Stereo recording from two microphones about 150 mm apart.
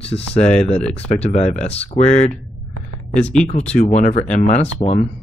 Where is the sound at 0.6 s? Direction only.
5° left (ahead or behind).